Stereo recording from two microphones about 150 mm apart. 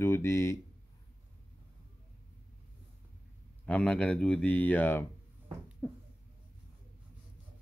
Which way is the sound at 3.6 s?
5° left (ahead or behind).